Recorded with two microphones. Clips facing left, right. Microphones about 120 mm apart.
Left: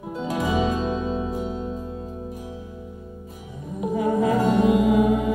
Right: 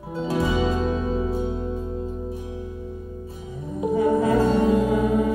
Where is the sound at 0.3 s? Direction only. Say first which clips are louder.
Even; 15° left (ahead or behind).